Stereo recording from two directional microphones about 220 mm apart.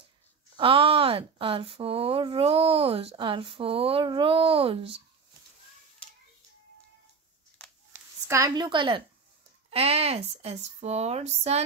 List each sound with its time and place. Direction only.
0.6 s speech: 25° right (ahead or behind)
7.9 s speech: 15° right (ahead or behind); by 11.6 s 30° right (ahead or behind)